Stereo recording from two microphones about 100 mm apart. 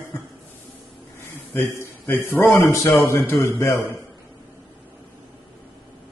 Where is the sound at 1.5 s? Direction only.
25° left (ahead or behind).